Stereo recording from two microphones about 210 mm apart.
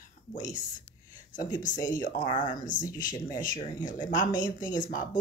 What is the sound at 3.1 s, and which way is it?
Speech, 20° left (ahead or behind).